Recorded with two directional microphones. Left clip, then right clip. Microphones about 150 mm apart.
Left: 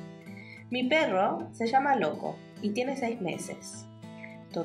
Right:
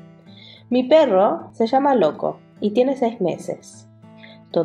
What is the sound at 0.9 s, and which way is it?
A woman's voice, 25° right (ahead or behind).